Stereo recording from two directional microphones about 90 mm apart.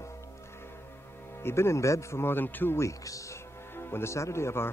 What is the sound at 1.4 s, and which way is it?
Speech, 30° left (ahead or behind).